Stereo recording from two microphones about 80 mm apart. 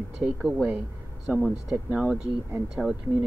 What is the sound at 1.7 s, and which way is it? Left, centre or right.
Speech, centre.